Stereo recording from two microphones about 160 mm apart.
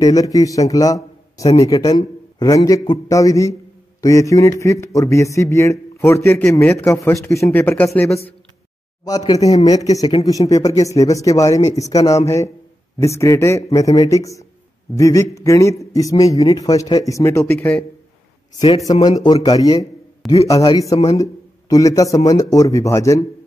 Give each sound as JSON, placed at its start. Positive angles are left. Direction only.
{"t": 0.0, "sound": "a man's voice", "side_deg": 20}
{"t": 9.0, "sound": "a man's voice", "side_deg": 25}
{"t": 19.0, "sound": "a man's voice", "side_deg": 25}
{"t": 20.9, "sound": "speech", "side_deg": 40}
{"t": 21.2, "sound": "a man's voice", "side_deg": 20}